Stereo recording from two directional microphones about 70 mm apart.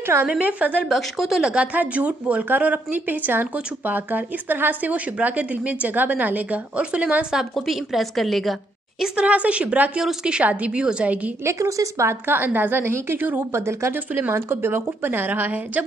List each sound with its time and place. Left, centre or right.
0.0 s a woman's voice: right
0.3 s speech: right
0.8 s speech: centre
7.5 s a woman's voice: centre
9.0 s a woman's voice: centre
11.4 s speech: right
12.1 s a woman's voice: right
13.9 s a woman's voice: right